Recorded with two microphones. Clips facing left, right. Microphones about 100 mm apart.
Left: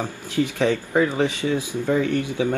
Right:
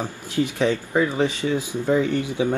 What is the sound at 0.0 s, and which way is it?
Speech, 15° right (ahead or behind).